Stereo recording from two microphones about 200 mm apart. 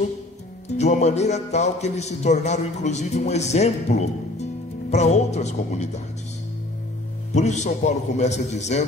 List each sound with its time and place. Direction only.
0.7 s a man's voice: 35° left (ahead or behind)
7.3 s a man's voice: 35° left (ahead or behind)